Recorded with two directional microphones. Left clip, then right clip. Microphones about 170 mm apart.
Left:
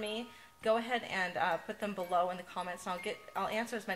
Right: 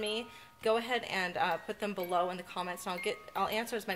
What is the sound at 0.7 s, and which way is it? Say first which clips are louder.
Speech: right 1 dB; 40° right (ahead or behind).